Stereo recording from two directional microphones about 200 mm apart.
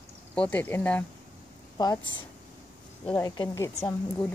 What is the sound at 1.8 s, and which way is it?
Speech, 20° left (ahead or behind).